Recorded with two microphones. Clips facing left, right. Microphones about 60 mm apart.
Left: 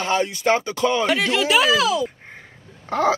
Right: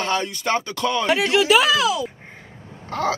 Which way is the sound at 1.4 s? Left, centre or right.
Centre.